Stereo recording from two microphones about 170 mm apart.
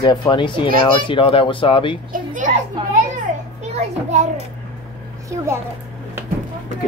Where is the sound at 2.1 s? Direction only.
50° right (ahead or behind).